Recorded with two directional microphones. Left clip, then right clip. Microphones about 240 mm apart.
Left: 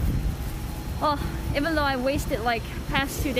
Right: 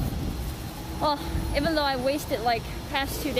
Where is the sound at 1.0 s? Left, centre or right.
Centre.